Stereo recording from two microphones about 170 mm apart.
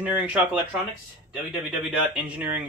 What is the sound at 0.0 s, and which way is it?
Speech, 10° right (ahead or behind).